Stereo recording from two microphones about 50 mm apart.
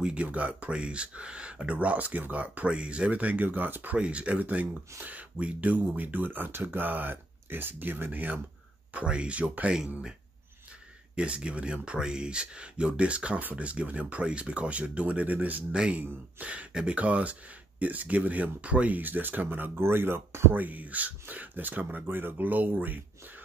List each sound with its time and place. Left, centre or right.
0.0 s speech: right
3.9 s speech: right
8.9 s speech: right
11.1 s speech: right
20.5 s speech: right